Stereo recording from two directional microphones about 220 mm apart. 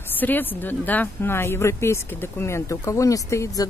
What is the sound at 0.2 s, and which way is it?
A woman's voice, 10° left (ahead or behind).